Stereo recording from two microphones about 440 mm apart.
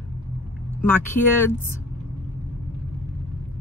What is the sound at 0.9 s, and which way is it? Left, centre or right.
Speech, centre.